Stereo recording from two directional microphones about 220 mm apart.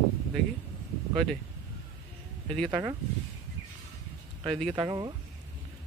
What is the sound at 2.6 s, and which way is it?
Speech, 20° right (ahead or behind).